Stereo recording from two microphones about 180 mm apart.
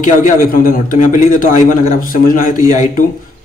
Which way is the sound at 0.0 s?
50° left (ahead or behind).